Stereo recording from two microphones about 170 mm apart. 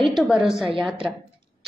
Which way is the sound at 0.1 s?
Centre (ahead or behind).